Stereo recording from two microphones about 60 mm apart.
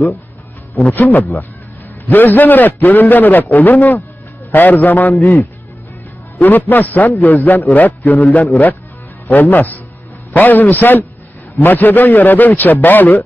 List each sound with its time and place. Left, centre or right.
0.8 s a man's voice: left